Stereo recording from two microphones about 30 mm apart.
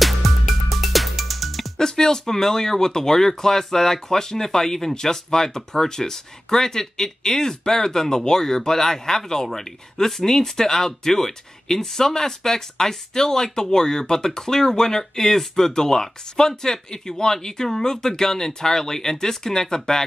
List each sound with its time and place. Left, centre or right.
0.0 s music: centre
1.8 s speech: centre